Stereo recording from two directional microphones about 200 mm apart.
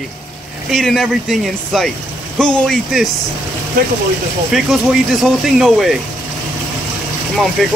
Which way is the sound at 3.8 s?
50° right (ahead or behind).